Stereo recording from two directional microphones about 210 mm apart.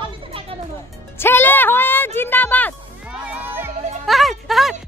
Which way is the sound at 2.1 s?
10° left (ahead or behind).